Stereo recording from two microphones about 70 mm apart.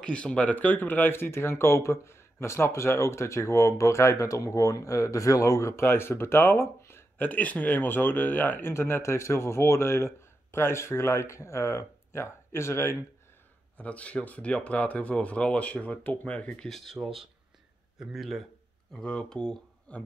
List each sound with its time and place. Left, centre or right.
0.0 s speech: centre; by 7.1 s left
7.2 s speech: left
13.7 s speech: centre
16.6 s speech: centre
19.0 s speech: centre